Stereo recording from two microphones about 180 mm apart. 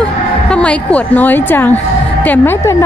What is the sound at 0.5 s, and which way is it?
A woman's voice, 5° left (ahead or behind).